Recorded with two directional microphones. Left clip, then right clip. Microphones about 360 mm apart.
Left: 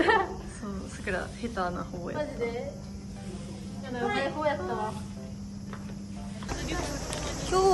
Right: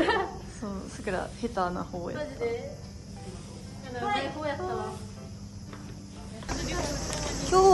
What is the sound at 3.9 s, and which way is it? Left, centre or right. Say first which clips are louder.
Speech: left 1 dB; centre.